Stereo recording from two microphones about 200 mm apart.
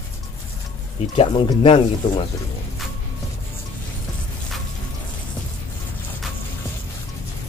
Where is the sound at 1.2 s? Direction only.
25° left (ahead or behind).